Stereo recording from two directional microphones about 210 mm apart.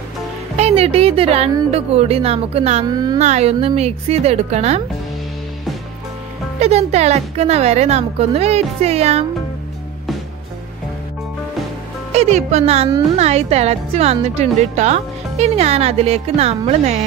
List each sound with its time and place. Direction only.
0.6 s speech: 30° right (ahead or behind)
2.9 s speech: 20° right (ahead or behind)
3.2 s speech: 30° right (ahead or behind)
6.6 s speech: 30° right (ahead or behind)
12.1 s speech: 30° right (ahead or behind)